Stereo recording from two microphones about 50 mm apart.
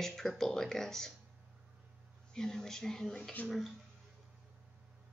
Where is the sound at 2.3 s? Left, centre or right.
Centre.